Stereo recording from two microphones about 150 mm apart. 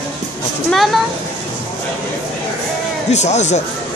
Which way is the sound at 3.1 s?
50° left (ahead or behind).